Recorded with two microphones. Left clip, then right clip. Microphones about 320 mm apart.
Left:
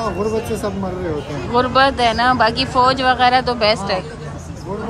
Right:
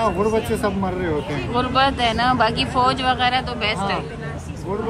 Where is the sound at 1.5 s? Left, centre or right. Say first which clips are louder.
Left 5 dB; centre.